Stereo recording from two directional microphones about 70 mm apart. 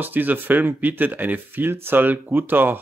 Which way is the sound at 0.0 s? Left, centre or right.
Right.